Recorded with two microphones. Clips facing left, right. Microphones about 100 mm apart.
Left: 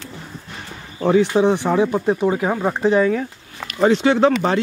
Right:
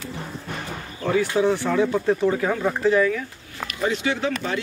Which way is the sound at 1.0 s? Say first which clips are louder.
Left 6 dB; 25° left (ahead or behind).